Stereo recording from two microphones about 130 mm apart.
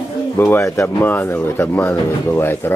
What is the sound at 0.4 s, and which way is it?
Speech, 20° left (ahead or behind).